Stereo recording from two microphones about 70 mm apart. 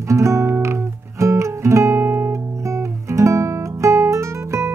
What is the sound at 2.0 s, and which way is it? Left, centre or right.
Guitar, right.